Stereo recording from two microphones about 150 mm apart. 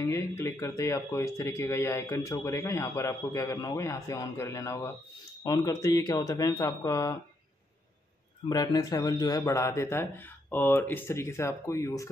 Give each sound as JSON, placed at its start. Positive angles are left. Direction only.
{"t": 0.0, "sound": "speech", "side_deg": 20}
{"t": 8.5, "sound": "speech", "side_deg": 25}